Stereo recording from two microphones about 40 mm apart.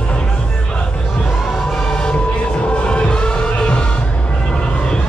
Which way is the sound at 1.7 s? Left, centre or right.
Centre.